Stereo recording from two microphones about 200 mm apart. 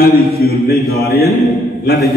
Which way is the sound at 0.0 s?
50° left (ahead or behind).